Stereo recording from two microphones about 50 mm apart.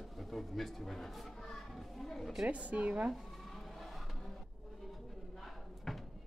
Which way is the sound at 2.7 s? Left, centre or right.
Right.